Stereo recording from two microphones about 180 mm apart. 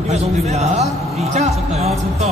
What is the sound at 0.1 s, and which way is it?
Speech, 35° right (ahead or behind).